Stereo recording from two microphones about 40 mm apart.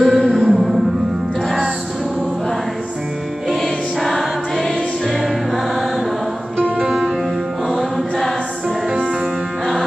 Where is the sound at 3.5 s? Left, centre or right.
Centre.